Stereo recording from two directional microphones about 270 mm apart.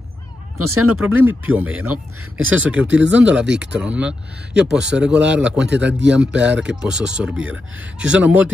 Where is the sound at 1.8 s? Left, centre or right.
Right.